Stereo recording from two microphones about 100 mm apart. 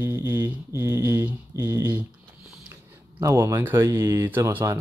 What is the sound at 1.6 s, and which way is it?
Speech, 40° right (ahead or behind).